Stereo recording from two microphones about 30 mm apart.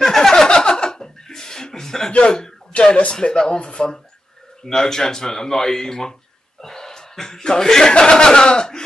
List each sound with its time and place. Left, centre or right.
0.0 s chuckle: centre
2.7 s speech: left
3.1 s speech: left
4.6 s speech: centre
6.6 s chuckle: centre
7.4 s speech: centre